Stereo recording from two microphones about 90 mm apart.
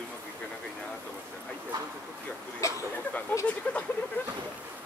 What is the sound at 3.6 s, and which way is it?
Speech, 15° left (ahead or behind).